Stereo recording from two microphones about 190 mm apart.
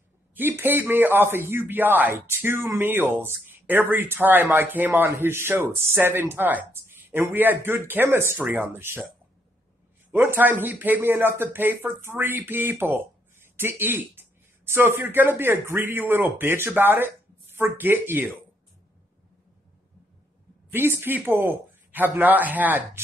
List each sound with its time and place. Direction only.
0.3 s a man's voice: 10° right (ahead or behind)
10.1 s a man's voice: 10° right (ahead or behind)
20.7 s a man's voice: 10° right (ahead or behind)